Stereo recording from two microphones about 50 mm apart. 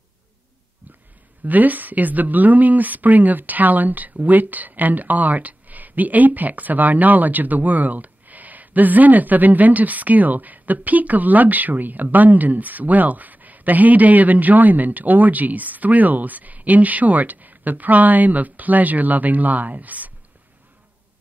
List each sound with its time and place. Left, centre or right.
1.4 s speech: right